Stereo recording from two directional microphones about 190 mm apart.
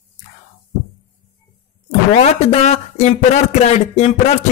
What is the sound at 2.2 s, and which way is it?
A man's voice, 35° left (ahead or behind).